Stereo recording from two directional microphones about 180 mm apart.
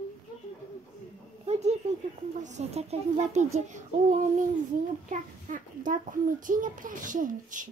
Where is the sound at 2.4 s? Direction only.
40° right (ahead or behind).